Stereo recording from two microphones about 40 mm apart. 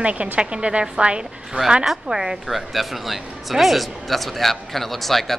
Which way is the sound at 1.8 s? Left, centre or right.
Centre.